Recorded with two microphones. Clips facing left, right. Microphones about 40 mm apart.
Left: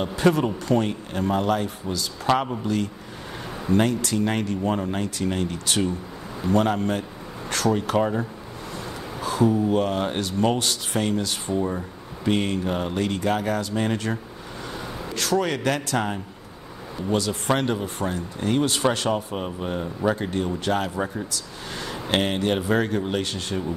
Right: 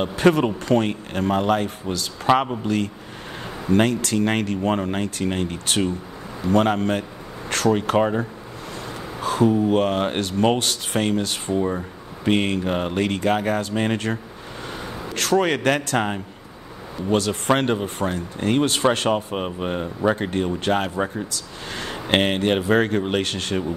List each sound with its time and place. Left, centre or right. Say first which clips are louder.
0.0 s speech: right 3 dB; right
2.3 s speech: right 4 dB; centre
2.6 s speech: right 2 dB; right
8.0 s speech: right 3 dB; right
9.2 s speech: right 2 dB; right
11.5 s speech: right 3 dB; centre
12.3 s speech: right 3 dB; right
15.1 s speech: right 4 dB; right
17.1 s speech: right 3 dB; right
20.2 s speech: right 3 dB; right
22.1 s speech: right 3 dB; right